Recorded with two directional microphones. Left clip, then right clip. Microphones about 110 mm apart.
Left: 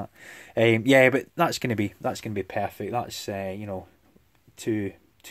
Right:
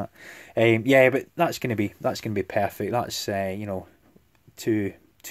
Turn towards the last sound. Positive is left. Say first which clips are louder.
# right 3 dB
turn(degrees=-15)  # may be behind; listen again after turning